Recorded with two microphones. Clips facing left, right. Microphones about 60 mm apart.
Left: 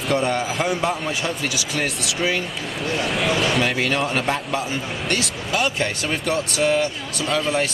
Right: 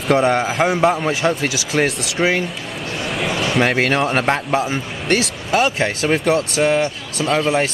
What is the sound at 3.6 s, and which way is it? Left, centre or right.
Speech, right.